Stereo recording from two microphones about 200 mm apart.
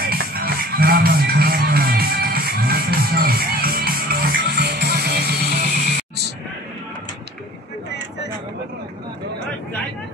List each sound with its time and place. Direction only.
0.1 s music: 50° right (ahead or behind)